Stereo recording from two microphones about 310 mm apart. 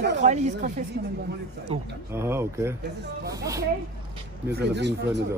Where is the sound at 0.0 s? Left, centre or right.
Right.